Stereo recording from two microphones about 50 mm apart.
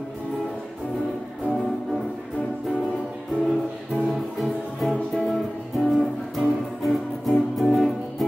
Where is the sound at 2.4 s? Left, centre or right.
Left.